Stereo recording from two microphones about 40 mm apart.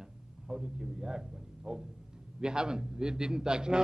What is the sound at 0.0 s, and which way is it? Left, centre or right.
A man's voice, centre.